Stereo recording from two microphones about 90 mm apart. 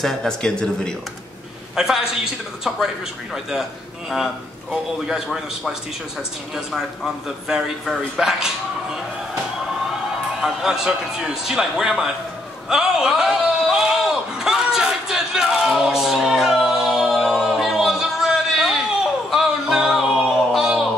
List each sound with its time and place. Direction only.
0.0 s speech: 5° left (ahead or behind)
1.8 s a man's voice: 5° right (ahead or behind)
5.0 s a man's voice: 5° right (ahead or behind)
10.4 s a man's voice: 5° right (ahead or behind)
12.6 s a sound: 5° right (ahead or behind)
19.3 s music: 5° right (ahead or behind)